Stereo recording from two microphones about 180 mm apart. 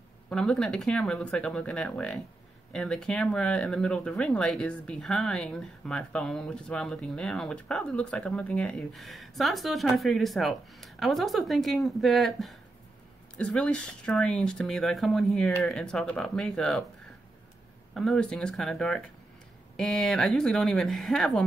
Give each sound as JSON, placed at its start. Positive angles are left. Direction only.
{"t": 0.3, "sound": "speech", "side_deg": 5}
{"t": 17.9, "sound": "speech", "side_deg": 0}